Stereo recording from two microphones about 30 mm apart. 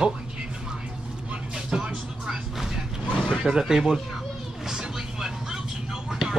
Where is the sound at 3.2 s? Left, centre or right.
Centre.